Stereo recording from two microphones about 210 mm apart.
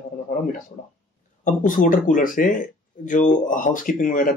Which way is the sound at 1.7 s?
40° left (ahead or behind).